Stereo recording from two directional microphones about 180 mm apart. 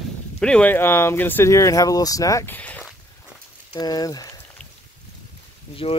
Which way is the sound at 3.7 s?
20° left (ahead or behind).